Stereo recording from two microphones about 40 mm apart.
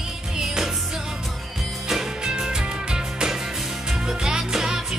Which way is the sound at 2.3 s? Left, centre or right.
Centre.